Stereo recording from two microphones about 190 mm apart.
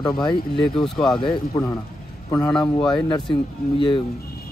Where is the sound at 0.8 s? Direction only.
Centre (ahead or behind).